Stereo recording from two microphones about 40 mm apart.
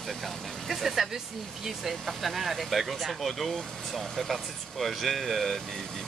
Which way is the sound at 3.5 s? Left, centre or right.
Centre.